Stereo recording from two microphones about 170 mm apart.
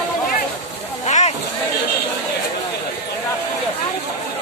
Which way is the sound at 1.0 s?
45° left (ahead or behind).